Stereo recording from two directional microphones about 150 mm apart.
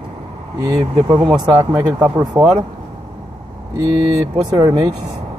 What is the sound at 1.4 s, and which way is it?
Speech, 25° right (ahead or behind).